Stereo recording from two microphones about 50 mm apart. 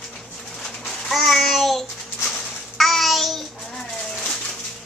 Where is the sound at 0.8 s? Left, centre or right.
Centre.